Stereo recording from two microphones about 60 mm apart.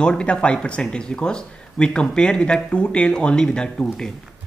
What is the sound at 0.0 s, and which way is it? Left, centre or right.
Speech, centre.